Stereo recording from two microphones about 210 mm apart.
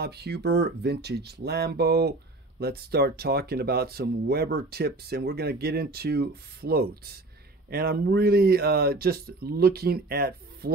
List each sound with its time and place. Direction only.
0.0 s speech: 50° right (ahead or behind)